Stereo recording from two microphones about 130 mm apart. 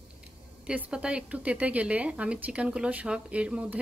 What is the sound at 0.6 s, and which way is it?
Speech, 5° right (ahead or behind).